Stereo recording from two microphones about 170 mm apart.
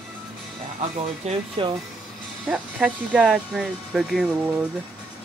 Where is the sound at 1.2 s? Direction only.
35° right (ahead or behind).